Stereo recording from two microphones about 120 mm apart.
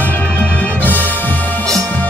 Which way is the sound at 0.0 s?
15° left (ahead or behind).